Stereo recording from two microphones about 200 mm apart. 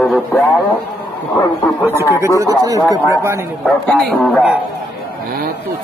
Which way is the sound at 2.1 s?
15° right (ahead or behind).